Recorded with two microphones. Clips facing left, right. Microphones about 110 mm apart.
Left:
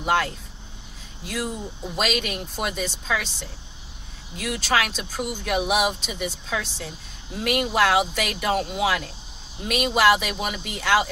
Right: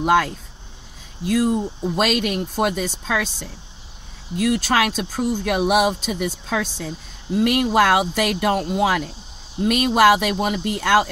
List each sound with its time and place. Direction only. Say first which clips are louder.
0.0 s speech: right 5 dB; 60° right (ahead or behind)
1.3 s speech: right 10 dB; 50° right (ahead or behind)